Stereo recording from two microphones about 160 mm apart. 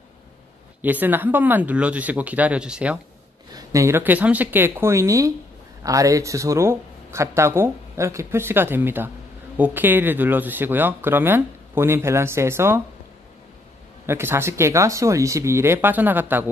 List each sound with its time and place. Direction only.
0.8 s speech: 10° right (ahead or behind)
3.5 s speech: 20° right (ahead or behind)
14.0 s speech: 15° right (ahead or behind)